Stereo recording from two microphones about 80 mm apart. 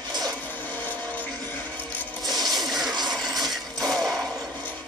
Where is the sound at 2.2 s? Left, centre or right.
Right.